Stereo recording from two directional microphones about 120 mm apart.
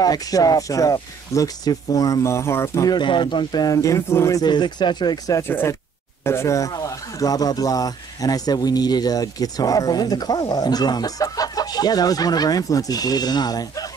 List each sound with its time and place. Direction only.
0.0 s speech: 30° left (ahead or behind)
5.5 s speech: 15° left (ahead or behind); by 13.8 s 30° left (ahead or behind)